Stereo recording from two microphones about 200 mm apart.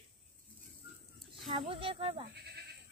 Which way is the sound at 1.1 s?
Centre (ahead or behind).